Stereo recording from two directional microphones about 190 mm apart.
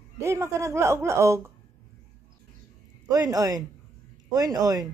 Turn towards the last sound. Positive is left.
turn(degrees=-20)  # may be behind; listen again after turning